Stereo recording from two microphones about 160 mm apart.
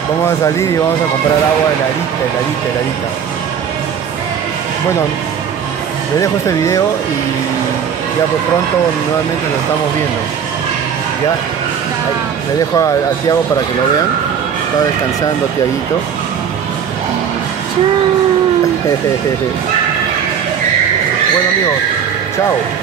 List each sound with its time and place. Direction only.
0.2 s speech: 20° left (ahead or behind)
6.1 s speech: 20° left (ahead or behind)
12.7 s speech: 20° left (ahead or behind)